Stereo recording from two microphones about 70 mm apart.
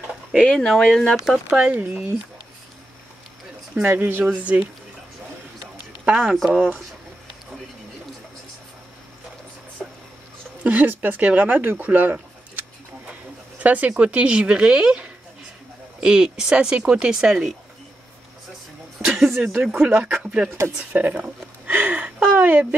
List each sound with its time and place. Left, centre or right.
0.4 s speech: centre
1.5 s speech: centre
3.8 s speech: right
4.3 s speech: centre
6.1 s speech: centre
6.5 s speech: right
10.6 s speech: right; by 17.6 s centre
19.1 s speech: centre
20.9 s speech: right